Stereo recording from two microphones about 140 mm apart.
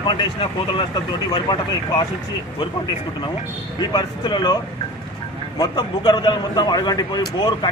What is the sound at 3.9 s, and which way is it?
Speech, 30° left (ahead or behind).